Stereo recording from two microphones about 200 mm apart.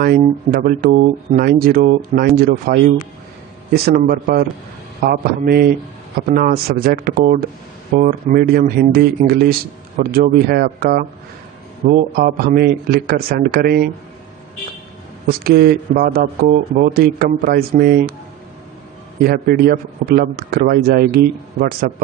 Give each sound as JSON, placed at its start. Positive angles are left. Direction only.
{"t": 0.0, "sound": "speech", "side_deg": -50}
{"t": 15.2, "sound": "speech", "side_deg": -50}
{"t": 19.2, "sound": "speech", "side_deg": -50}